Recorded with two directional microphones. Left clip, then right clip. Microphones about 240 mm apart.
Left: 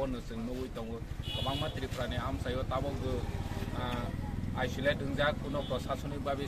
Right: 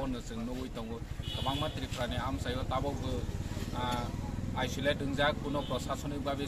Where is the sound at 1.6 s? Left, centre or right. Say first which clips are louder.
Right 1 dB; centre.